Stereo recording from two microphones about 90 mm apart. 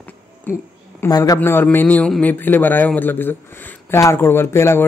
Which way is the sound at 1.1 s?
40° left (ahead or behind).